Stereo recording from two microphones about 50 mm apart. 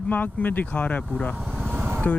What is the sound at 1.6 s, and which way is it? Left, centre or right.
Vehicle, right.